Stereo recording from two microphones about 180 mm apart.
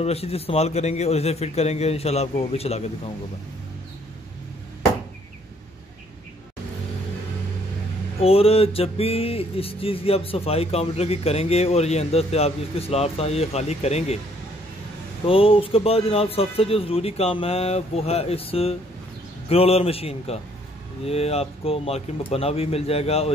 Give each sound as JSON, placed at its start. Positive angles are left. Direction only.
{"t": 0.0, "sound": "speech", "side_deg": 35}
{"t": 8.2, "sound": "speech", "side_deg": 35}
{"t": 15.2, "sound": "speech", "side_deg": 30}